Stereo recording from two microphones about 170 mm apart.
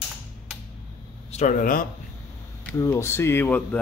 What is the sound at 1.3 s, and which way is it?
Speech, 50° left (ahead or behind).